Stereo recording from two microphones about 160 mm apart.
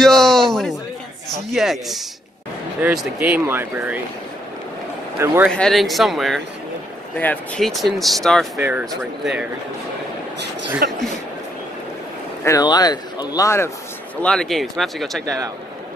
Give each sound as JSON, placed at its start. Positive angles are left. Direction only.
{"t": 0.0, "sound": "a sound", "side_deg": 5}
{"t": 1.3, "sound": "speech", "side_deg": 0}
{"t": 5.2, "sound": "speech", "side_deg": -15}
{"t": 5.5, "sound": "speech", "side_deg": 5}
{"t": 8.5, "sound": "speech", "side_deg": -10}
{"t": 10.8, "sound": "speech", "side_deg": -70}
{"t": 12.4, "sound": "speech", "side_deg": 25}
{"t": 14.2, "sound": "speech", "side_deg": 5}
{"t": 15.2, "sound": "a man's voice", "side_deg": -20}